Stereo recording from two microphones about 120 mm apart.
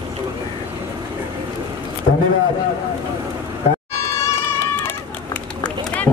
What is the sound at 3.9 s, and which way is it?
Cat, 25° left (ahead or behind).